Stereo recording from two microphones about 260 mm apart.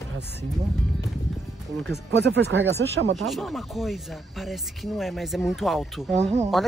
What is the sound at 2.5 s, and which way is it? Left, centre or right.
Speech, right.